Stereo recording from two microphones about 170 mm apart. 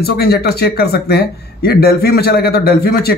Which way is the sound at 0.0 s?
65° left (ahead or behind).